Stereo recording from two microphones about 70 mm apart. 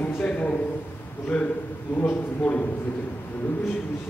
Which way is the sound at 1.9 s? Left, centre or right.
Left.